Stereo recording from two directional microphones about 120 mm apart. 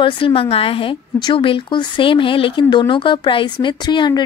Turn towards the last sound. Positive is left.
turn(degrees=35)  # may be behind; listen again after turning